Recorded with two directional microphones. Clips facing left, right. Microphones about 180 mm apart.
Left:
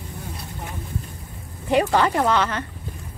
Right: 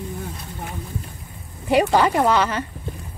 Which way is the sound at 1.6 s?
10° right (ahead or behind).